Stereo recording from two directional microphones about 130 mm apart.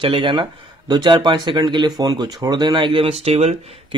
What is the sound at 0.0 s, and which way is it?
Speech, 40° right (ahead or behind).